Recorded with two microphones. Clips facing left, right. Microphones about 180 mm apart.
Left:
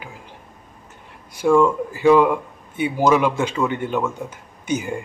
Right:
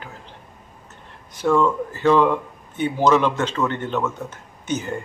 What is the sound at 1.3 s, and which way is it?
Speech, 10° left (ahead or behind).